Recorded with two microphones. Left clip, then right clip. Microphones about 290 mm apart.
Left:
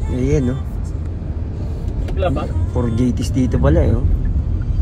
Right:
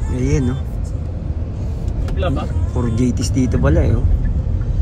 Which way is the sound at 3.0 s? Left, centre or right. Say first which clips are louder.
Even; right.